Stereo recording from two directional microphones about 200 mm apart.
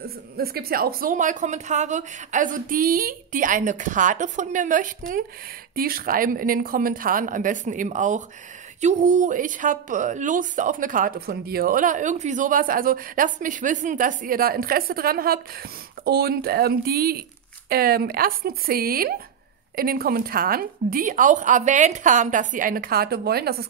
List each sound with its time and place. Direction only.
0.0 s a woman's voice: 50° right (ahead or behind)